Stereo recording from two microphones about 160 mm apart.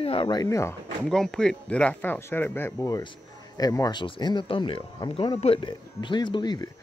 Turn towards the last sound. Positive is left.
turn(degrees=25)  # may be behind; listen again after turning